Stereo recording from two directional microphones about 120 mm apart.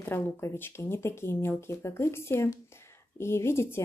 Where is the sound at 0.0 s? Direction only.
20° left (ahead or behind).